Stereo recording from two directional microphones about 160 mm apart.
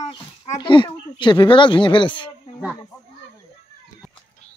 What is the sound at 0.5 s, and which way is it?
Speech, 30° left (ahead or behind).